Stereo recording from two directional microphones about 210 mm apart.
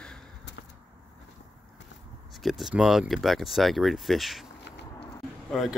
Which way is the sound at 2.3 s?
Centre (ahead or behind).